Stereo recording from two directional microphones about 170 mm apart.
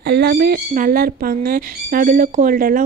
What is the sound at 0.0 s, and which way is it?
A woman's voice, 70° right (ahead or behind).